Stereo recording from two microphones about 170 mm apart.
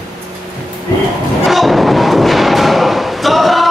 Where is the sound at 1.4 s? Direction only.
Centre (ahead or behind).